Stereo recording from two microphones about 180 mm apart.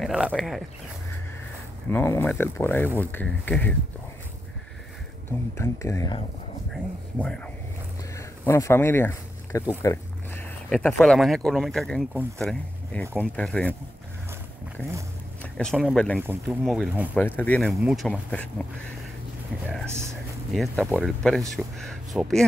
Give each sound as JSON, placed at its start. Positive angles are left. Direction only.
{"t": 0.0, "sound": "speech", "side_deg": 0}
{"t": 1.9, "sound": "speech", "side_deg": 15}
{"t": 5.6, "sound": "speech", "side_deg": 15}
{"t": 6.7, "sound": "speech", "side_deg": 5}
{"t": 8.2, "sound": "a sound", "side_deg": 15}
{"t": 10.7, "sound": "speech", "side_deg": 5}
{"t": 14.8, "sound": "speech", "side_deg": 10}
{"t": 16.2, "sound": "speech", "side_deg": -10}
{"t": 16.6, "sound": "speech", "side_deg": 0}
{"t": 17.2, "sound": "speech", "side_deg": 10}
{"t": 20.5, "sound": "speech", "side_deg": 0}